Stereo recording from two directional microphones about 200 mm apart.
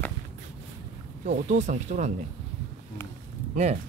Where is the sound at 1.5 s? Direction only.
35° right (ahead or behind).